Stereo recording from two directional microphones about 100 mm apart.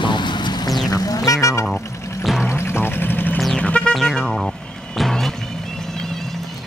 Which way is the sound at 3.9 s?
Centre (ahead or behind).